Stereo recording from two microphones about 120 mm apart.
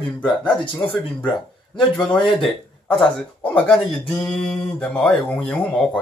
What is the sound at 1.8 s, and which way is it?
Speech, 5° left (ahead or behind).